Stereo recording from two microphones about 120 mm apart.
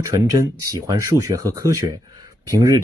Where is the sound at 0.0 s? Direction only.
25° right (ahead or behind).